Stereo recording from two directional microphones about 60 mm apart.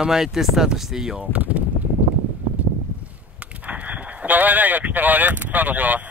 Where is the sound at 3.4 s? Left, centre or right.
Right.